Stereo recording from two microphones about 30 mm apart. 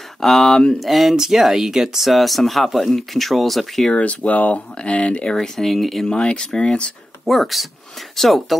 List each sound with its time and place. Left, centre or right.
0.2 s speech: centre
1.1 s speech: centre
2.0 s speech: centre
4.0 s speech: left
4.9 s speech: left
5.6 s speech: centre
6.0 s speech: left
7.2 s speech: centre